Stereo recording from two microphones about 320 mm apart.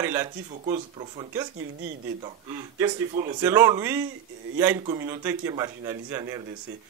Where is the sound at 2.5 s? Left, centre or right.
Centre.